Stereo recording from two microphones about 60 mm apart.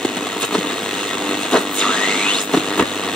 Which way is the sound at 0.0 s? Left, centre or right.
Centre.